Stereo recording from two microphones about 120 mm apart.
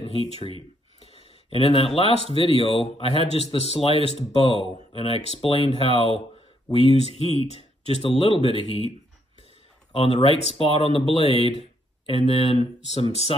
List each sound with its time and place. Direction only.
0.0 s speech: 55° left (ahead or behind)
1.0 s a sound: 55° left (ahead or behind)
2.0 s speech: 55° left (ahead or behind)
9.9 s speech: 50° left (ahead or behind)
13.1 s speech: 55° left (ahead or behind)